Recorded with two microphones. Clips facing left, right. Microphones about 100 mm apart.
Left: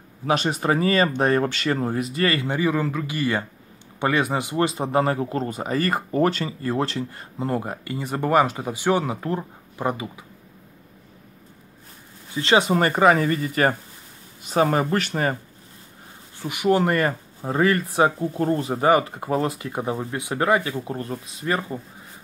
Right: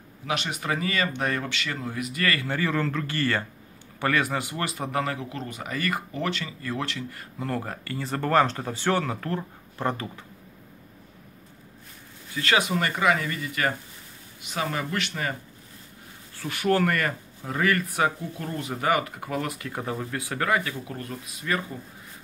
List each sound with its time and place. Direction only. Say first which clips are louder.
0.2 s speech: left 8 dB; 35° left (ahead or behind); by 10.2 s 10° left (ahead or behind)
12.3 s speech: left 5 dB; 25° left (ahead or behind)
12.7 s speech: left 6 dB; 40° left (ahead or behind)
16.3 s speech: left 3 dB; 15° left (ahead or behind)